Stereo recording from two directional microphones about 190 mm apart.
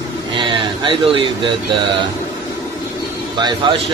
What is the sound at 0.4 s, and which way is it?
Speech, 25° right (ahead or behind).